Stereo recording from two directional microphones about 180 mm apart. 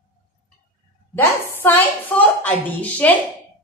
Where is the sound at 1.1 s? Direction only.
10° left (ahead or behind).